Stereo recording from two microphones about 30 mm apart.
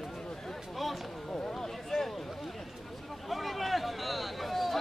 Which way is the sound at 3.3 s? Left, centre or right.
Centre.